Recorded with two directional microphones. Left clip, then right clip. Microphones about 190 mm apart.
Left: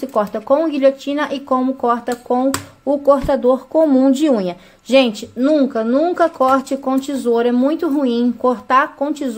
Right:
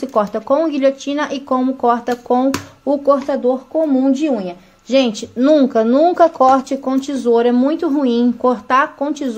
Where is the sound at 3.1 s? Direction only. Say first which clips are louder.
Left 1 dB; 10° left (ahead or behind).